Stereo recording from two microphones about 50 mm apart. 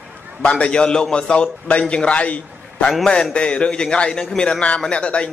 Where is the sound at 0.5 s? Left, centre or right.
Left.